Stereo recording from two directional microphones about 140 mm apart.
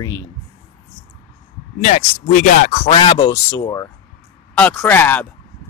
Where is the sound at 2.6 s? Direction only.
85° left.